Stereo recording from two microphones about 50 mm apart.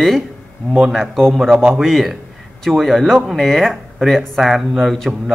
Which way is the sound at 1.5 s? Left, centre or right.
Right.